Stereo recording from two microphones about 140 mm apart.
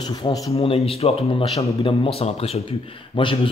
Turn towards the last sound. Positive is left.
turn(degrees=35)  # may be behind; listen again after turning